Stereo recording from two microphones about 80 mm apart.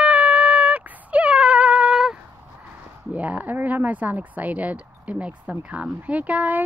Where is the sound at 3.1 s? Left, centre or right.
Centre.